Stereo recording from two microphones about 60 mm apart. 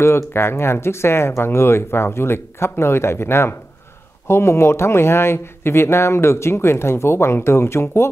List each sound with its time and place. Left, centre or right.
0.0 s speech: left